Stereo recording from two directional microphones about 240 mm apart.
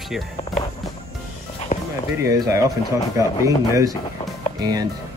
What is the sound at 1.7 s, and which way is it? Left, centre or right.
Music, left.